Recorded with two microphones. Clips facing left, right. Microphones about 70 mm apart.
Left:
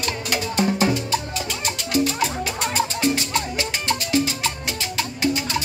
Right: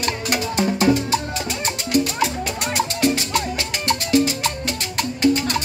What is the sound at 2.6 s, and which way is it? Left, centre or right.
Music, right.